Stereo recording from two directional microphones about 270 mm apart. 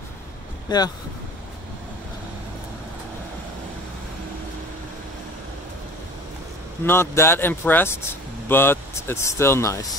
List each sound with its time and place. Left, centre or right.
0.7 s speech: centre
6.9 s speech: centre